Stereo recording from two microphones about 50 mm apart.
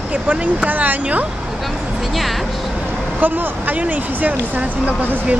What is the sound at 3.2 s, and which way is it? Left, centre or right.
Speech, right.